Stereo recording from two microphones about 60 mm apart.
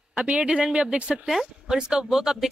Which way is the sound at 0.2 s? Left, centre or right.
Centre.